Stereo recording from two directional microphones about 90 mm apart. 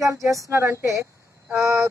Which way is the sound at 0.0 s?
35° right (ahead or behind).